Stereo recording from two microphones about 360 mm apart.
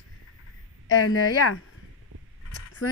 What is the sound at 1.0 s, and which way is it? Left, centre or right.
Speech, left.